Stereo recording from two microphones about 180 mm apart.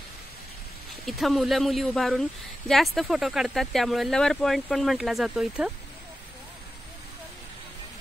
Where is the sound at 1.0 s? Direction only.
Centre (ahead or behind).